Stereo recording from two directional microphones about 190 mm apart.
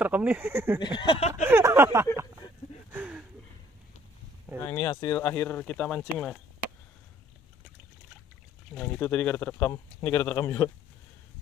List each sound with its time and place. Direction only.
0.0 s speech: 5° right (ahead or behind)
0.7 s a sound: 25° left (ahead or behind)
1.5 s speech: 15° right (ahead or behind)
2.9 s a sound: 5° right (ahead or behind)
4.6 s speech: 15° left (ahead or behind)
8.7 s speech: 10° left (ahead or behind)